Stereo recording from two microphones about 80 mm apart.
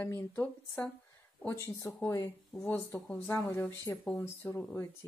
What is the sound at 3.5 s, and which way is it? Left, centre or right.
A woman's voice, left.